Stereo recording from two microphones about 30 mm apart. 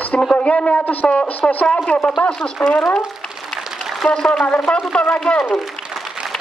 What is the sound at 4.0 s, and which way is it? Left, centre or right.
Speech, left.